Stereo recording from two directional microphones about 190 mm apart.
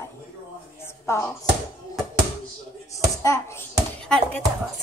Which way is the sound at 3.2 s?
15° left (ahead or behind).